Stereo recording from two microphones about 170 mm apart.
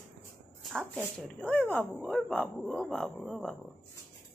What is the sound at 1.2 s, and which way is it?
Speech, 5° left (ahead or behind).